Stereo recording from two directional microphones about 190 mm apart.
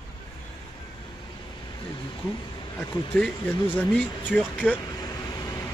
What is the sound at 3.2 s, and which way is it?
Speech, 5° left (ahead or behind).